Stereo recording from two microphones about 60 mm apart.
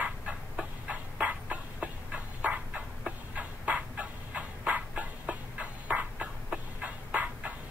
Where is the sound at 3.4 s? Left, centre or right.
Right.